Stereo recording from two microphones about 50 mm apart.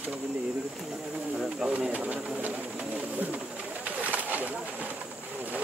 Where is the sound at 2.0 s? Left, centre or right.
Right.